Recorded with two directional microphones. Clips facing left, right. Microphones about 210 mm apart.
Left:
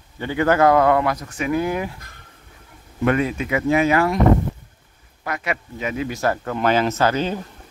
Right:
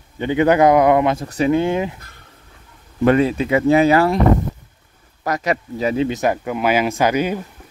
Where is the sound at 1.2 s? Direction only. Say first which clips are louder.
Right 5 dB; 35° right (ahead or behind).